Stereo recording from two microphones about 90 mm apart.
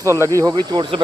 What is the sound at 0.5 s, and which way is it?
Speech, 60° right (ahead or behind).